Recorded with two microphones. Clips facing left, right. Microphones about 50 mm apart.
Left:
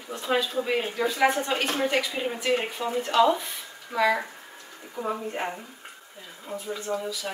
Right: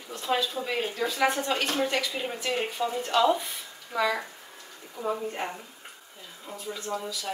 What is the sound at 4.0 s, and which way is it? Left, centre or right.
A woman's voice, centre.